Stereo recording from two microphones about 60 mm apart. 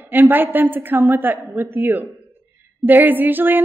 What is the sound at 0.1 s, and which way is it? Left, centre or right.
A woman's voice, right.